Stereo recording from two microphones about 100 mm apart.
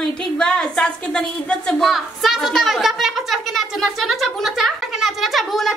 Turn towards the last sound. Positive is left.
turn(degrees=0)  # may be behind; listen again after turning